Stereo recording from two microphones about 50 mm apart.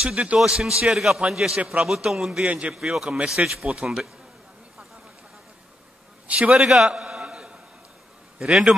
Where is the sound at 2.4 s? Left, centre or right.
Right.